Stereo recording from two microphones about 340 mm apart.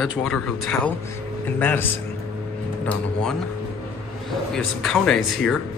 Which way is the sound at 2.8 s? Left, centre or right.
Centre.